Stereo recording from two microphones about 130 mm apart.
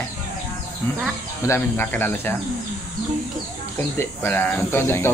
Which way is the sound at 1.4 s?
15° left (ahead or behind).